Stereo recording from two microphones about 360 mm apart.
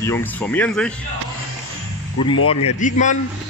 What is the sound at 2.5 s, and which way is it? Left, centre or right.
Speech, centre.